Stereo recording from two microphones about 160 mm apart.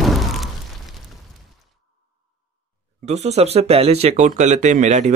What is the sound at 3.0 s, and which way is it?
Speech, 45° right (ahead or behind).